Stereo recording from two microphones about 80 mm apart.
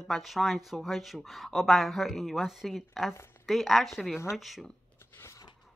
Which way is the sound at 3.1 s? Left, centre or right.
Left.